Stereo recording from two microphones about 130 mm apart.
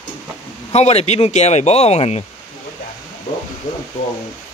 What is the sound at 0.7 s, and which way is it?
Speech, 55° left (ahead or behind).